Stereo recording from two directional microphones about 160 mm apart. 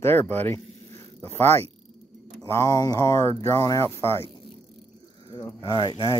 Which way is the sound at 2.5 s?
25° left (ahead or behind).